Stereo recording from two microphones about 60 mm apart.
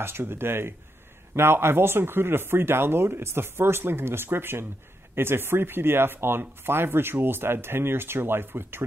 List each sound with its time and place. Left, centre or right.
0.0 s speech: right